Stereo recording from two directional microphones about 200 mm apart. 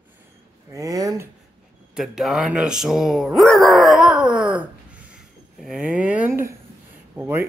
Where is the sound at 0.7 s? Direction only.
15° right (ahead or behind).